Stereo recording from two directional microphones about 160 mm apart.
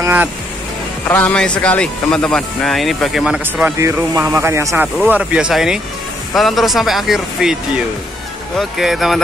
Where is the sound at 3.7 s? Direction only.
20° right (ahead or behind).